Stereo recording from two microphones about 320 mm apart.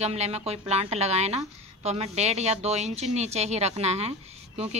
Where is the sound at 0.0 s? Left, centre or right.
Centre.